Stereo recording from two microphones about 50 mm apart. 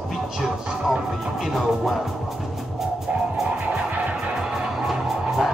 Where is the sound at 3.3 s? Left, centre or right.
Centre.